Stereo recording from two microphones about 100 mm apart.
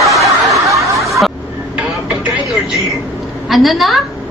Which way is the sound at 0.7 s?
30° right (ahead or behind).